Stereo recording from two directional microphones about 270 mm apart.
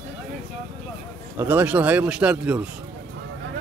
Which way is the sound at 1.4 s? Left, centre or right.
Centre.